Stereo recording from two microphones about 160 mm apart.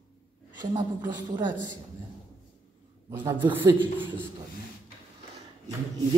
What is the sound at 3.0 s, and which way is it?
Speech, 20° right (ahead or behind).